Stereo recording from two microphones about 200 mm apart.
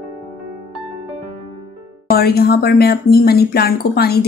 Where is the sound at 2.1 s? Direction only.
50° left (ahead or behind).